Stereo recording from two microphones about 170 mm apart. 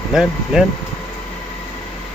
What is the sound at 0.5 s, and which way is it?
Speech, 5° right (ahead or behind).